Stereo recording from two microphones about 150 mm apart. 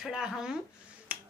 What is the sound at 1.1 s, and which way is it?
Finger snapping, 10° right (ahead or behind).